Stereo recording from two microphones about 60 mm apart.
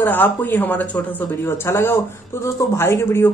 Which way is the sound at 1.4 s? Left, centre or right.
Left.